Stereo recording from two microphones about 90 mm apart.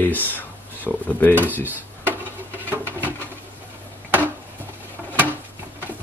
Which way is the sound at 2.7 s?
25° right (ahead or behind).